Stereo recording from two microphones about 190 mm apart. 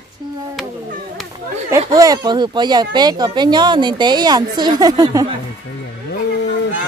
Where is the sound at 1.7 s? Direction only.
20° right (ahead or behind).